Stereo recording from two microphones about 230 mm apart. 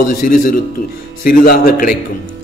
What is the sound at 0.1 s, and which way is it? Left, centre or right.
A man's voice, left.